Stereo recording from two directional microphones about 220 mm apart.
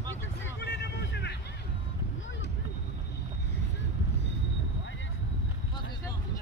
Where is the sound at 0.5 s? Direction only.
50° left (ahead or behind).